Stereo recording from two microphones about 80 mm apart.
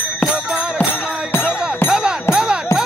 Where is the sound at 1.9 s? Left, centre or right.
Centre.